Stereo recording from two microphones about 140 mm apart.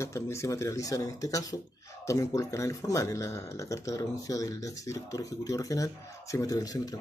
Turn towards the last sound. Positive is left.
turn(degrees=25)  # may be behind; listen again after turning